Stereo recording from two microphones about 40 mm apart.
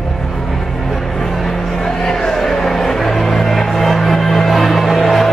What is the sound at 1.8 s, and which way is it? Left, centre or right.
Music, centre.